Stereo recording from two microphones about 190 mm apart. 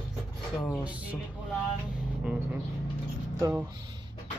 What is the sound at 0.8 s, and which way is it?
Music, 5° right (ahead or behind).